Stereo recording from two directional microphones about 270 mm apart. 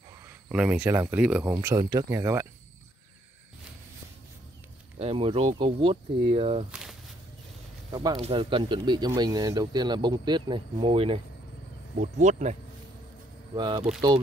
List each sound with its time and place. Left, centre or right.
0.2 s speech: centre
4.9 s speech: right
6.7 s a sound: centre
7.9 s speech: centre
13.6 s speech: centre